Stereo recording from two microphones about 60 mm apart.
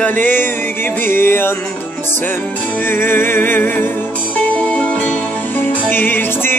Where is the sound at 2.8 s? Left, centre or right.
Left.